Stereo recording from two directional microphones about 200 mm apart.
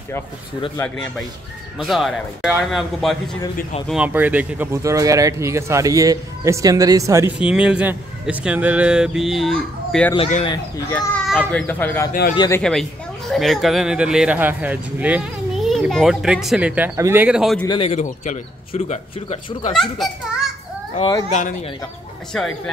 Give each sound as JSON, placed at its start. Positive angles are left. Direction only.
{"t": 0.7, "sound": "speech", "side_deg": 5}
{"t": 7.3, "sound": "a child's voice", "side_deg": -5}
{"t": 12.1, "sound": "speech", "side_deg": 45}
{"t": 12.4, "sound": "a child's voice", "side_deg": 15}
{"t": 13.3, "sound": "speech", "side_deg": 0}
{"t": 17.6, "sound": "a man's voice", "side_deg": 30}
{"t": 19.7, "sound": "speech", "side_deg": 0}
{"t": 21.3, "sound": "a man's voice", "side_deg": 40}
{"t": 22.3, "sound": "speech", "side_deg": 0}